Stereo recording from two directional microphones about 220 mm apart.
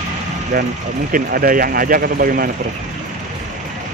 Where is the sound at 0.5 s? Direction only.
40° right (ahead or behind).